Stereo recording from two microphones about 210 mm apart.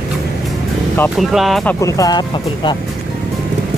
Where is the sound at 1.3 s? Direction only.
Centre (ahead or behind); by 2.7 s 20° left (ahead or behind).